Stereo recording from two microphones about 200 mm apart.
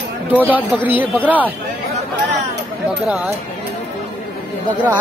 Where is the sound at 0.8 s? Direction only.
10° right (ahead or behind).